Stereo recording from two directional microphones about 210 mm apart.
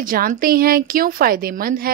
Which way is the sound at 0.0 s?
40° right (ahead or behind).